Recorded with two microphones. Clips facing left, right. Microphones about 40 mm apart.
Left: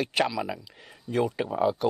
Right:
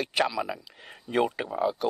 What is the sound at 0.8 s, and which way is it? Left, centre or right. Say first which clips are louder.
Speech: right 1 dB; right.